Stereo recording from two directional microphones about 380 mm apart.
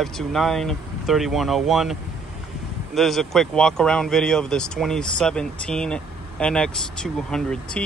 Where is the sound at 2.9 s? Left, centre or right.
Centre.